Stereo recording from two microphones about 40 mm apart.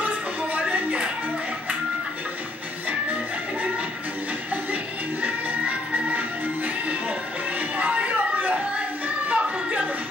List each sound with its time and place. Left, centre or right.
0.0 s music: right
5.2 s music: right
7.7 s a sound: right